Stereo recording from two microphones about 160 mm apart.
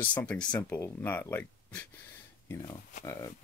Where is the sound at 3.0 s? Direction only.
20° left (ahead or behind).